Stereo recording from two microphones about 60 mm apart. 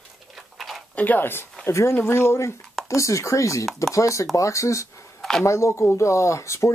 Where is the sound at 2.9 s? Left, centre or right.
Left.